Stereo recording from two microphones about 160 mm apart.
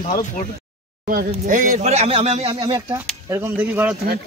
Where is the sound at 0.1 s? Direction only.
55° left (ahead or behind).